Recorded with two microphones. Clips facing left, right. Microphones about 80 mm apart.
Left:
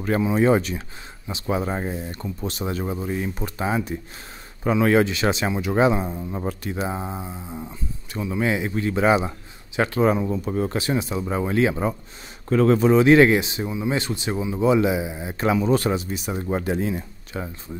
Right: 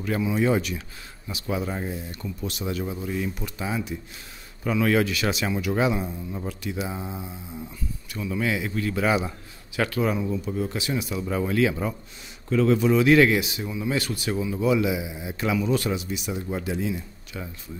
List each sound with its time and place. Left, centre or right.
0.0 s speech: left
12.4 s speech: left